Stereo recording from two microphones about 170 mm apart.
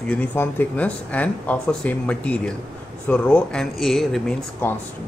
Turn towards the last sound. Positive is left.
turn(degrees=10)  # may be behind; listen again after turning